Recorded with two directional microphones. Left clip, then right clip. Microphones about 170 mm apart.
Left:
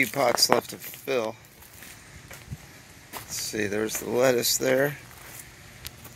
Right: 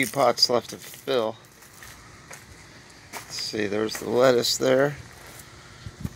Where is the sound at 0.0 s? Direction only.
5° right (ahead or behind).